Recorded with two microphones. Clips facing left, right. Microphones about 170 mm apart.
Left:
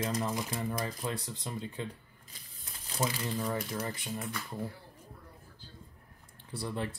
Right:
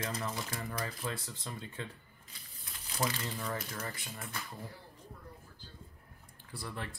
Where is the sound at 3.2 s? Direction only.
20° left (ahead or behind).